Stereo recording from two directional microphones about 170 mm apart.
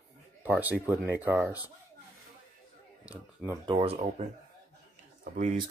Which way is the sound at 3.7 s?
35° right (ahead or behind).